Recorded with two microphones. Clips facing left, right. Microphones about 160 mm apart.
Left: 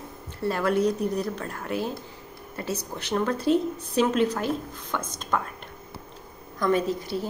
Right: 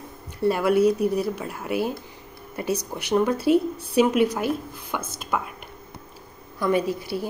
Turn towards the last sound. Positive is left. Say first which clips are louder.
# right 2 dB
turn(degrees=-10)  # may be behind; listen again after turning